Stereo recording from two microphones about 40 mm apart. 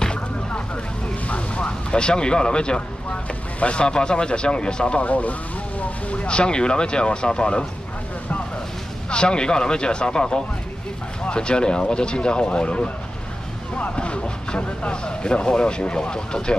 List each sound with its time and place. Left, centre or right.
1.3 s vehicle: left
3.5 s speech: left
5.0 s speech: left
9.1 s speech: left
13.9 s speech: left